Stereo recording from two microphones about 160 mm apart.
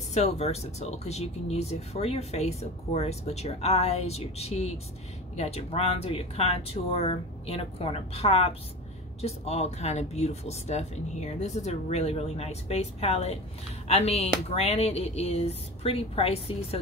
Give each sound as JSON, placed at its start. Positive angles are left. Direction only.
{"t": 0.1, "sound": "speech", "side_deg": 40}